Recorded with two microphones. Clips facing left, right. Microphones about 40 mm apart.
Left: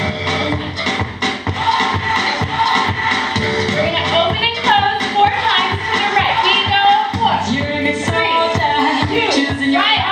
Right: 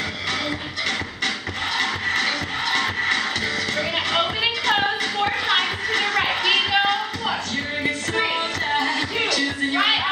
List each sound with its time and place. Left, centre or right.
1.2 s music: left